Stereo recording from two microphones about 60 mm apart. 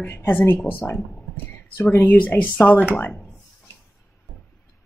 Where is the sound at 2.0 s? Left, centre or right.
Left.